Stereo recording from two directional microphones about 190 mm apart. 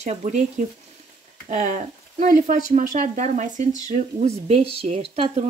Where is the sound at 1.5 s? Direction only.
45° right (ahead or behind).